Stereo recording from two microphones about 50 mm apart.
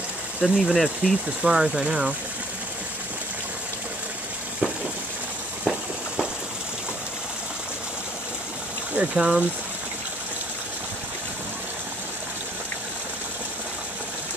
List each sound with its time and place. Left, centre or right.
0.4 s speech: centre
8.9 s speech: right